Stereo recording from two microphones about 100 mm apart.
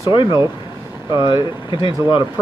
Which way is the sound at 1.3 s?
55° left (ahead or behind).